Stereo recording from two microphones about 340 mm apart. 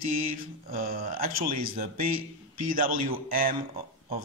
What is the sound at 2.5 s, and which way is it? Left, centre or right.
Speech, right.